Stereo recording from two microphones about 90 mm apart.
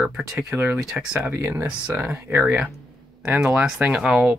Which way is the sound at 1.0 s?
10° right (ahead or behind).